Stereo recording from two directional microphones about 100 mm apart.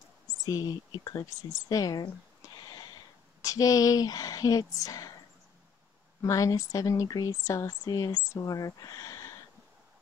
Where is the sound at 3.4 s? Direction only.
35° left (ahead or behind).